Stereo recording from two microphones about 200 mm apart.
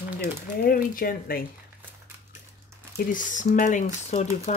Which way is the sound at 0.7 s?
45° left (ahead or behind).